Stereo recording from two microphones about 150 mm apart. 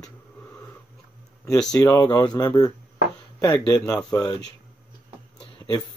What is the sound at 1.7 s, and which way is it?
Speech, 25° left (ahead or behind).